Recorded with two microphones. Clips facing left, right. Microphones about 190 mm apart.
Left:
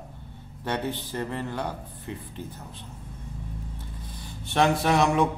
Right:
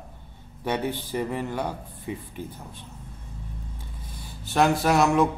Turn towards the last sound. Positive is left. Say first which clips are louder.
# right 2 dB
turn(degrees=0)  # may be behind; listen again after turning